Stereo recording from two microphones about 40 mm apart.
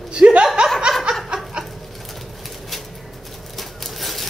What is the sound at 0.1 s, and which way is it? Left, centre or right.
Laughter, right.